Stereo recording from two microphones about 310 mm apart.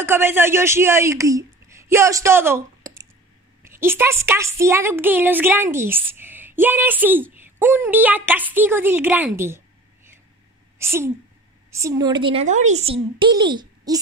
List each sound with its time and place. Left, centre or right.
0.0 s a woman's voice: centre
10.8 s a woman's voice: centre